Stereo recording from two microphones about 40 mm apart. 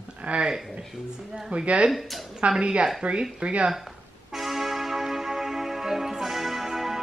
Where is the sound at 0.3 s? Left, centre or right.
Right.